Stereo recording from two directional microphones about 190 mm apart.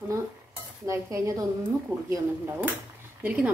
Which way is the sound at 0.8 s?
15° right (ahead or behind).